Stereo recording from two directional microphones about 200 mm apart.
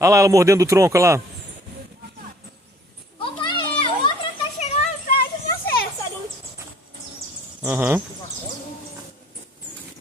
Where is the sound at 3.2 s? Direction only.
25° left (ahead or behind).